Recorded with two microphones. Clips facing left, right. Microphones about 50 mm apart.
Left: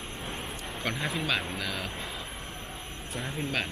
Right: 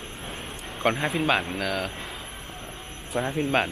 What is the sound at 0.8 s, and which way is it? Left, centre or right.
Speech, right.